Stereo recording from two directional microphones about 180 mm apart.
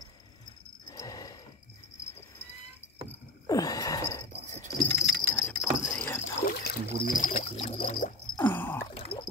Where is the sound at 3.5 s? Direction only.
20° left (ahead or behind).